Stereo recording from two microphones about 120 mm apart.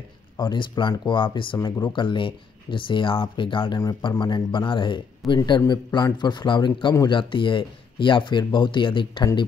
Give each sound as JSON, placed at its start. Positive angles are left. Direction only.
{"t": 0.4, "sound": "speech", "side_deg": 40}